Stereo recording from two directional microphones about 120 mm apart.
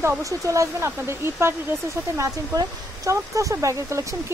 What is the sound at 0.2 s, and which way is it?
A woman's voice, 25° right (ahead or behind).